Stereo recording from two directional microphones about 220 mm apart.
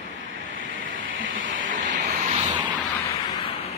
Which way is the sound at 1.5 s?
35° right (ahead or behind).